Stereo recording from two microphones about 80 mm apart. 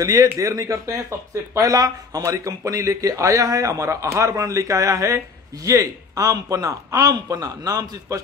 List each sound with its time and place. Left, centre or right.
0.0 s speech: right